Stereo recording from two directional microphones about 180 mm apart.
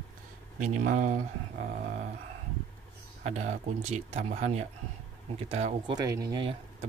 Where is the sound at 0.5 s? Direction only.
45° right (ahead or behind).